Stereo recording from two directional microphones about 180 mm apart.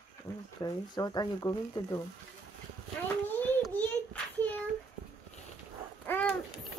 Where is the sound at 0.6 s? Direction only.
20° left (ahead or behind).